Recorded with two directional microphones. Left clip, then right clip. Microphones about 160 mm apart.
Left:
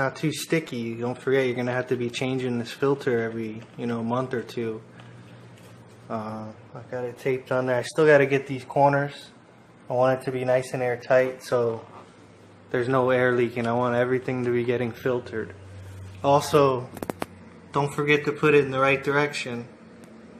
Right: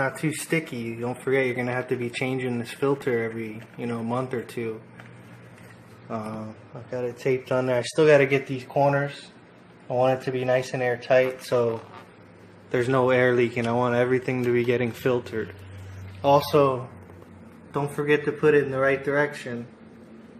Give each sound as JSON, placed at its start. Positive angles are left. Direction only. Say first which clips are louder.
{"t": 0.0, "sound": "speech", "louder": "even", "side_deg": 0}
{"t": 6.0, "sound": "speech", "louder": "left 1 dB", "side_deg": -10}
{"t": 6.9, "sound": "speech", "louder": "right 2 dB", "side_deg": -20}
{"t": 12.7, "sound": "speech", "louder": "right 1 dB", "side_deg": -10}
{"t": 16.2, "sound": "speech", "louder": "even", "side_deg": 5}
{"t": 17.7, "sound": "speech", "louder": "left 1 dB", "side_deg": 15}